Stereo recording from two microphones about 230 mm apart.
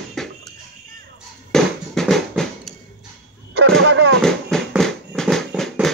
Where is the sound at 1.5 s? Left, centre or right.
Centre.